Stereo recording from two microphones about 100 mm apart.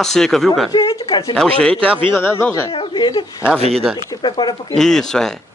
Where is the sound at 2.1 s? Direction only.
25° left (ahead or behind).